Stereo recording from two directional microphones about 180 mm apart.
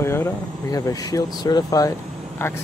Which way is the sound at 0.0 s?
15° left (ahead or behind).